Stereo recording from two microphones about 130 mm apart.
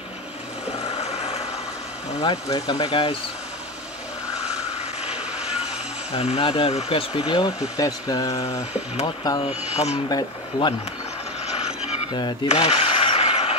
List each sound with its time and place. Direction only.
0.9 s music: 50° left (ahead or behind)
2.4 s speech: 30° left (ahead or behind)
2.8 s speech: 45° left (ahead or behind)
5.1 s vehicle: 50° left (ahead or behind)
6.1 s speech: 50° left (ahead or behind); by 9.4 s 30° left (ahead or behind)
9.4 s speech: 55° left (ahead or behind)
10.0 s speech: 30° left (ahead or behind)
11.4 s mechanisms: 55° left (ahead or behind)
12.4 s a sound: 50° left (ahead or behind)